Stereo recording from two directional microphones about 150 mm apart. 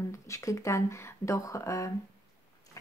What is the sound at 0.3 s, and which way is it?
Speech, 20° left (ahead or behind).